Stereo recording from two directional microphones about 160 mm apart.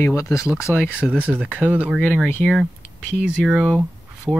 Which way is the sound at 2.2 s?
10° left (ahead or behind).